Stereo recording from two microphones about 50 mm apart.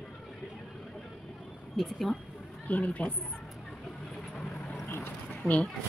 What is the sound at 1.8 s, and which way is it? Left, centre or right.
Speech, centre.